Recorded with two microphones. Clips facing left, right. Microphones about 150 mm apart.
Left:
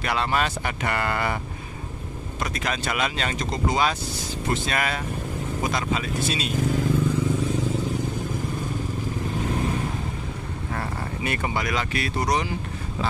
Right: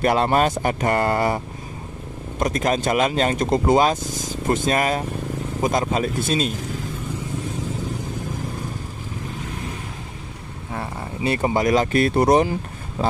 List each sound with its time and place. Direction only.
0.0 s speech: 45° right (ahead or behind)
11.2 s speech: 35° right (ahead or behind); by 12.4 s 50° right (ahead or behind)